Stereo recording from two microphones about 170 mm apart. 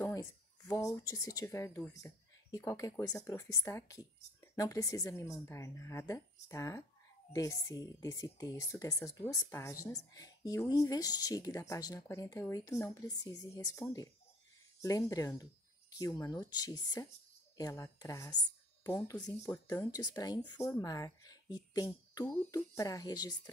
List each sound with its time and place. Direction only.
0.0 s speech: 20° left (ahead or behind)